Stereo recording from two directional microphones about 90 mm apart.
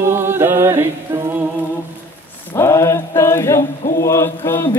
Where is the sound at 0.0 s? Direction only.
30° right (ahead or behind).